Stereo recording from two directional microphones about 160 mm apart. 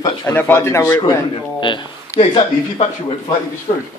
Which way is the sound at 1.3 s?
30° left (ahead or behind).